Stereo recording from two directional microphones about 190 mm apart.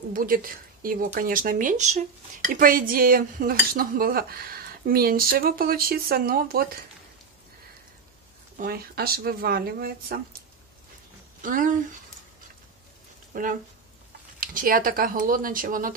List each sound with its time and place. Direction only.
0.1 s dishes: 50° right (ahead or behind)
8.5 s dishes: 50° right (ahead or behind)
11.4 s dishes: 45° right (ahead or behind)
13.3 s speech: 45° right (ahead or behind)
14.4 s dishes: 45° right (ahead or behind)